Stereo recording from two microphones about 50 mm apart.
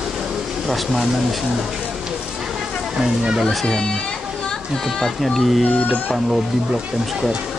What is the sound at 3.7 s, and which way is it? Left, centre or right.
Children playing, centre.